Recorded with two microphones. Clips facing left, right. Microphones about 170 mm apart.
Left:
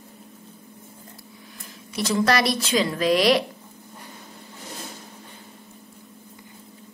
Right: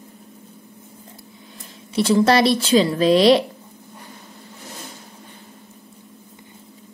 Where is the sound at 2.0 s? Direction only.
30° right (ahead or behind).